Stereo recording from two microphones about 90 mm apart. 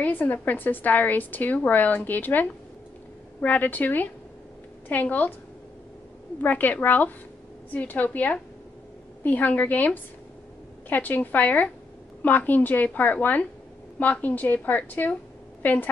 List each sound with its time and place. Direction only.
0.0 s a woman's voice: 20° left (ahead or behind)
6.4 s a woman's voice: 20° left (ahead or behind)